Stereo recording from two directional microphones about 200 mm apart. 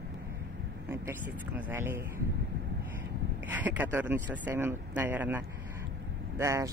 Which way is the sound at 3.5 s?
10° right (ahead or behind).